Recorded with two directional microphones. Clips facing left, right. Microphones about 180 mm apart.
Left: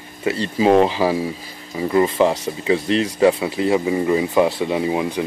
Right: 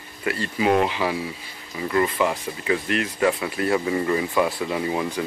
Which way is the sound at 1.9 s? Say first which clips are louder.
Left 5 dB; 25° left (ahead or behind).